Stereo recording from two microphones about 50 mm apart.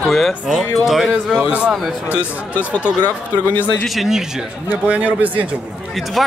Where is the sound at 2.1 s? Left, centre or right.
Left.